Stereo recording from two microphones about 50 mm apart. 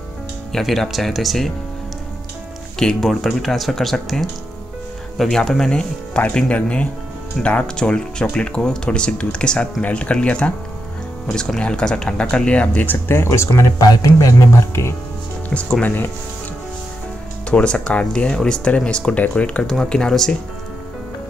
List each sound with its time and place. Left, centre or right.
0.5 s speech: centre
2.8 s speech: centre
3.3 s speech: centre
5.7 s speech: left
12.8 s speech: left
13.3 s speech: left
15.5 s speech: centre
17.5 s speech: left
18.3 s speech: centre
19.6 s speech: centre